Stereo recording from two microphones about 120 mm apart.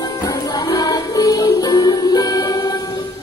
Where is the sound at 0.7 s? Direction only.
30° left (ahead or behind).